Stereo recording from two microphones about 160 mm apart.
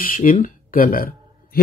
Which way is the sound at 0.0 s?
60° left (ahead or behind).